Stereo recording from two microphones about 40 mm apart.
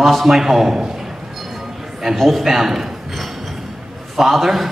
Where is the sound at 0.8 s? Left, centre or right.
Centre.